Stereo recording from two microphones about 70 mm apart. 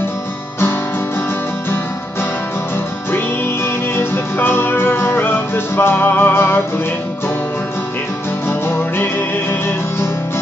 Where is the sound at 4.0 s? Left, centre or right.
Left.